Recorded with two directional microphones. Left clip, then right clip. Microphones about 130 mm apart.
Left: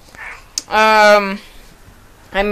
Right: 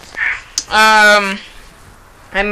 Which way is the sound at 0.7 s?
10° left (ahead or behind).